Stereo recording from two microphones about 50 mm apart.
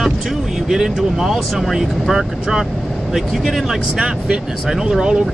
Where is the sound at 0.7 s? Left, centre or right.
Centre.